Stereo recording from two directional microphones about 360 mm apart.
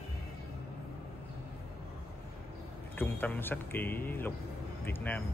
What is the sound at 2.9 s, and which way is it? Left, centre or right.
Speech, centre.